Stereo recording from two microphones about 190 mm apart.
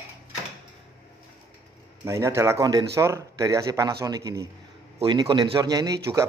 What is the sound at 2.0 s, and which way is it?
A man's voice, 15° right (ahead or behind).